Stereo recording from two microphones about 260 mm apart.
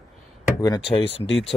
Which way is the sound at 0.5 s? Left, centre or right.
Centre.